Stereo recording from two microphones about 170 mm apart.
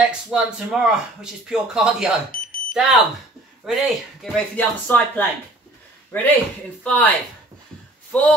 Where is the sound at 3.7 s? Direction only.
Centre (ahead or behind).